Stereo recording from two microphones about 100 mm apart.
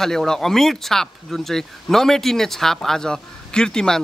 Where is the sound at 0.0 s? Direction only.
5° left (ahead or behind).